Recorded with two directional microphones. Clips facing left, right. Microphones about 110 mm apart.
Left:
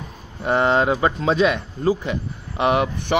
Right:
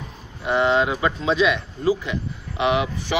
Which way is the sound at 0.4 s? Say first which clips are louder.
Left 1 dB; 45° left (ahead or behind).